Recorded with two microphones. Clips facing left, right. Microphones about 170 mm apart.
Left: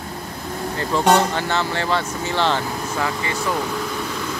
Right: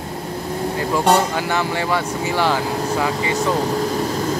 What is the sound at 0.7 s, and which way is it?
Speech, 5° right (ahead or behind).